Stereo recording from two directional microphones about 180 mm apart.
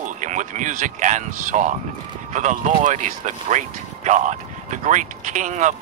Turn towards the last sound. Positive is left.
turn(degrees=-45)  # may be behind; listen again after turning